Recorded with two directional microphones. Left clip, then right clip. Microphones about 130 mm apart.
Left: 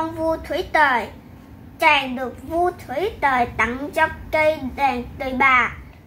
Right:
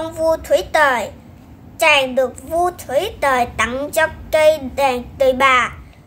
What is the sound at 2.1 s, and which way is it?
A woman's voice, 25° right (ahead or behind).